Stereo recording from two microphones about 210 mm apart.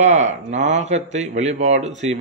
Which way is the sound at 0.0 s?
35° right (ahead or behind).